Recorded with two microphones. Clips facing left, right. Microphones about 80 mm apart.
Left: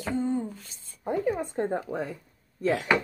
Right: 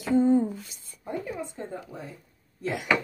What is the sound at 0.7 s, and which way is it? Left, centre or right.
Speech, left.